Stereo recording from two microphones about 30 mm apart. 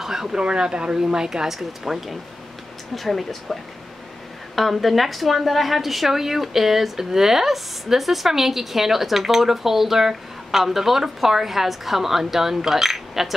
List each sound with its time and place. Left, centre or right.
0.0 s speech: centre
0.4 s speech: right
1.5 s a woman's voice: centre
2.9 s speech: centre
4.6 s a woman's voice: centre
12.9 s cutlery: centre